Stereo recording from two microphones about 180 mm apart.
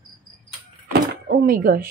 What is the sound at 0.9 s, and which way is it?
Door, 60° right (ahead or behind).